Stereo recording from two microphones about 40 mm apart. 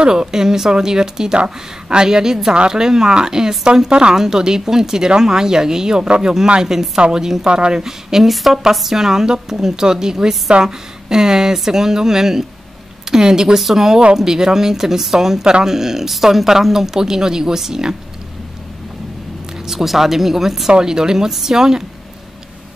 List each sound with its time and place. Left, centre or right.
0.0 s speech: centre
3.9 s speech: right
19.6 s speech: centre